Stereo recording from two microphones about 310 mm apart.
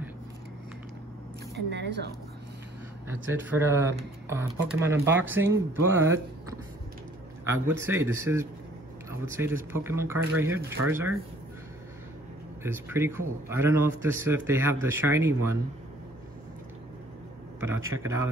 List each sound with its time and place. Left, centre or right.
1.7 s speech: right
3.1 s speech: centre
7.5 s speech: centre
12.6 s speech: centre
17.6 s a man's voice: centre